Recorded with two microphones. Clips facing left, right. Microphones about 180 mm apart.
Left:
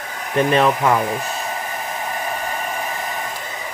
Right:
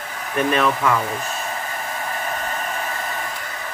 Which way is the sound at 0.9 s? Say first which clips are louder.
Left 3 dB; 15° left (ahead or behind).